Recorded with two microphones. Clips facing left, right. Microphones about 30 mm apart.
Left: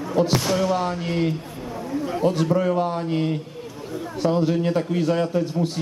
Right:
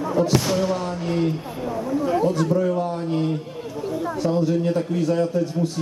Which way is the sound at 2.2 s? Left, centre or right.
Left.